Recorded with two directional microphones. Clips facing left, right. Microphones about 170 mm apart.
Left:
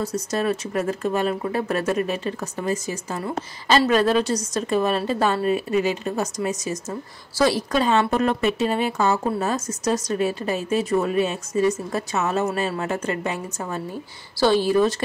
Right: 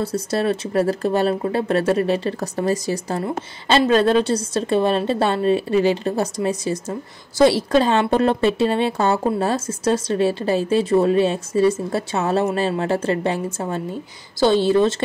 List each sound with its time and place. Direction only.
0.0 s a woman's voice: 30° right (ahead or behind)